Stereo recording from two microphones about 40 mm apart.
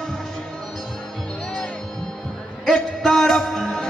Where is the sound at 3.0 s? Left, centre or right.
Centre.